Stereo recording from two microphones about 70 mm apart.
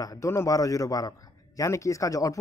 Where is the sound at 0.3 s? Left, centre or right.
Left.